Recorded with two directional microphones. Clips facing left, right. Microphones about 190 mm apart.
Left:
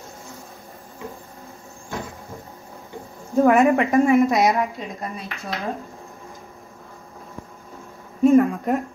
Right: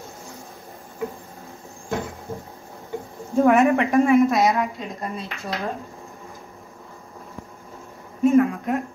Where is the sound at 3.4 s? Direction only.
Centre (ahead or behind).